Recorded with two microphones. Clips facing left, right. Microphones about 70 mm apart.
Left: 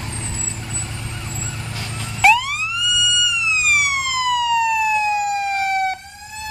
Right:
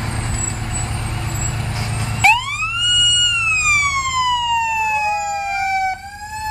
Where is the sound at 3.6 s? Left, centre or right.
Centre.